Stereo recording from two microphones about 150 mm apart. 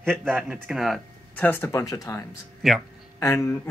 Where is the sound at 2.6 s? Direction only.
Centre (ahead or behind).